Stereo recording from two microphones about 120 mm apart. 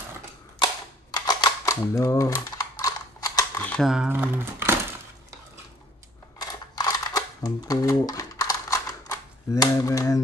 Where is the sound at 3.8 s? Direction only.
5° right (ahead or behind).